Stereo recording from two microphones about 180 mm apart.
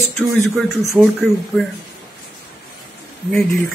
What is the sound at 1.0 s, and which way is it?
Speech, 10° right (ahead or behind).